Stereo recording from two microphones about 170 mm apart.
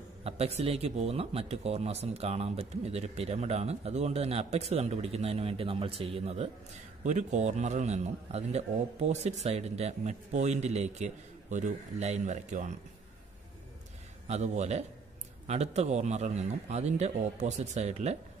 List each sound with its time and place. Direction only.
0.2 s a man's voice: 35° right (ahead or behind)
14.2 s speech: 40° right (ahead or behind)